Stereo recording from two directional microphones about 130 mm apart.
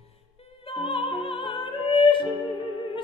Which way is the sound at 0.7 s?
45° left (ahead or behind).